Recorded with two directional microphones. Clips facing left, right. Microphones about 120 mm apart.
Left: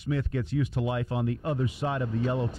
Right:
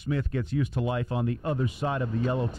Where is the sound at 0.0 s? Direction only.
45° right (ahead or behind).